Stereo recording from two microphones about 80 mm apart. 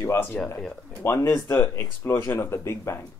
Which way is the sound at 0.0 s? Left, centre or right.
Left.